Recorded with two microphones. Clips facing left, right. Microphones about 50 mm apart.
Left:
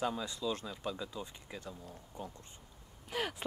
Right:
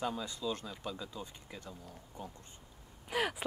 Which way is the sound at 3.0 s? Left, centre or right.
Centre.